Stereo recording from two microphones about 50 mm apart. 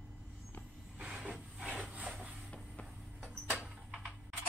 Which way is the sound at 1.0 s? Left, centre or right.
Centre.